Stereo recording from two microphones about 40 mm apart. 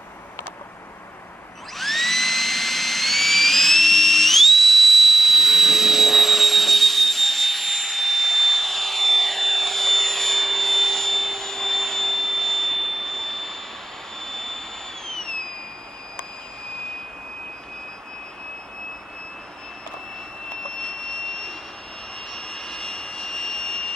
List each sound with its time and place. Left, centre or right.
1.8 s jet engine: centre
15.0 s fireworks: centre
20.6 s jet engine: centre